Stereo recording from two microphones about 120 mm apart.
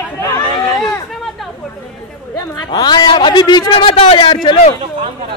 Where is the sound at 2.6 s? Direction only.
35° left (ahead or behind).